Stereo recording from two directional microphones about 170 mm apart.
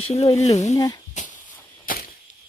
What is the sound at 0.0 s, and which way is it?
Speech, 40° left (ahead or behind).